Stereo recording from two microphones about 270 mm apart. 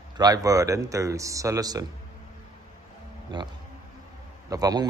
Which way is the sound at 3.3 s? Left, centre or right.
Centre.